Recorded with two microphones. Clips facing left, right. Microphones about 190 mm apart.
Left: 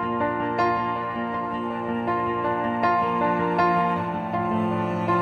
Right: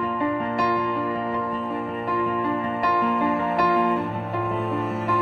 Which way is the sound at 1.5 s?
Centre (ahead or behind).